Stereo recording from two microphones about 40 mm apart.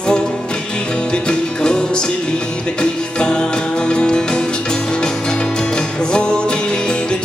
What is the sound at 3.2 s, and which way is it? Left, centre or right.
Music, left.